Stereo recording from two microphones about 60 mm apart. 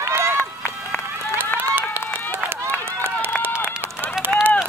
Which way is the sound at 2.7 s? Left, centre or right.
Left.